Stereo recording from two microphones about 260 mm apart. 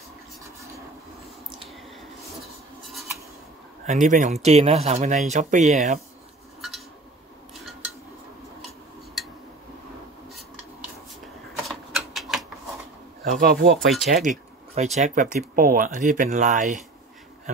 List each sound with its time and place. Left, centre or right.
2.4 s rub: centre
3.8 s speech: right
11.6 s typewriter: centre
13.2 s speech: right
13.7 s speech: centre
14.2 s speech: right